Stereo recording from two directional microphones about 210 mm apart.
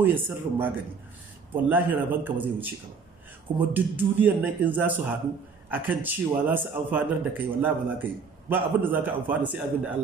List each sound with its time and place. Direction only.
0.0 s a man's voice: 10° right (ahead or behind)